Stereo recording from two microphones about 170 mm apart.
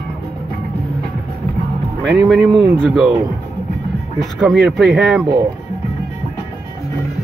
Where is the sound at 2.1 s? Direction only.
Centre (ahead or behind).